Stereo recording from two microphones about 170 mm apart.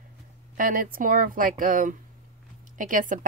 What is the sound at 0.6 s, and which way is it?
Speech, 55° right (ahead or behind).